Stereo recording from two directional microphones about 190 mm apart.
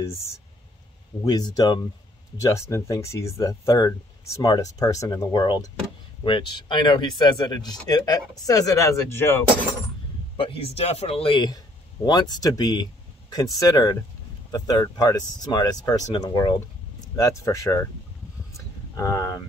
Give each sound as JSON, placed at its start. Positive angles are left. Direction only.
{"t": 1.2, "sound": "speech", "side_deg": 20}
{"t": 10.3, "sound": "speech", "side_deg": 25}
{"t": 18.9, "sound": "speech", "side_deg": 15}